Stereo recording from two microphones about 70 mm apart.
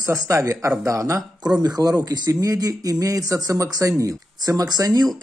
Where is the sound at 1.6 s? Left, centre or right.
Right.